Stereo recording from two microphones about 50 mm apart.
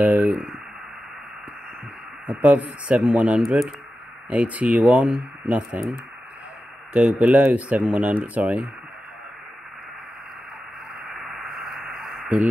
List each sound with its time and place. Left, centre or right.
0.0 s a sound: right
2.2 s speech: right
5.0 s speech: centre
6.9 s speech: right
11.1 s radio: centre